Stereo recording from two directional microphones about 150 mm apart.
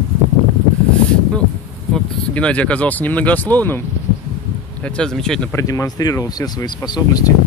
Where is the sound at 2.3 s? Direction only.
10° left (ahead or behind).